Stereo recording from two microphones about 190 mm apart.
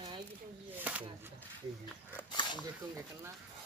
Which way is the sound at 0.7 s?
10° right (ahead or behind).